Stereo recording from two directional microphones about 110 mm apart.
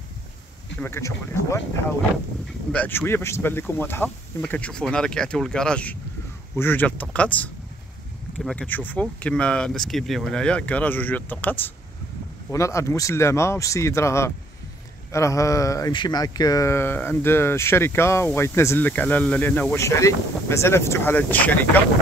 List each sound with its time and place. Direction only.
0.7 s speech: 20° left (ahead or behind)
2.7 s speech: 15° left (ahead or behind)
8.5 s speech: 15° left (ahead or behind)
12.4 s speech: 25° left (ahead or behind)
15.9 s speech: 40° left (ahead or behind); by 21.5 s 15° left (ahead or behind)